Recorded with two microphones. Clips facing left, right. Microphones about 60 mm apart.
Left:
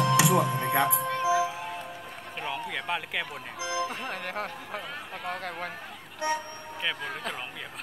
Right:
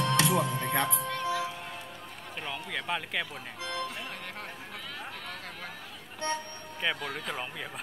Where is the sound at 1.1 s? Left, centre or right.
Centre.